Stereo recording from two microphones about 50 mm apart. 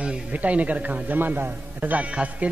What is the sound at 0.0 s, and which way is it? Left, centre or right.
A man's voice, right.